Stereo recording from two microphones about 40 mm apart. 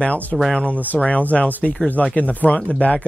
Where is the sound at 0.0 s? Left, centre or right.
Left.